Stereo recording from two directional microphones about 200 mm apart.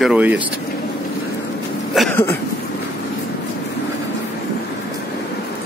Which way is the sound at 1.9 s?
Centre (ahead or behind).